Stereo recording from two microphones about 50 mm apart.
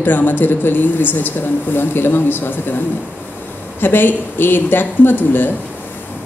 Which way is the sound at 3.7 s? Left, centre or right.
Left.